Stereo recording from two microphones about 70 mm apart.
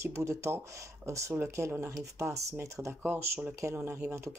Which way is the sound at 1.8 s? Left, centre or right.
Right.